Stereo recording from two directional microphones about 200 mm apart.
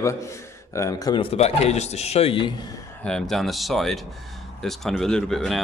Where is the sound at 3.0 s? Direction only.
5° left (ahead or behind).